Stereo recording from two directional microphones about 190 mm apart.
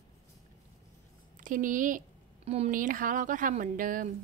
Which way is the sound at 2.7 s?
45° right (ahead or behind).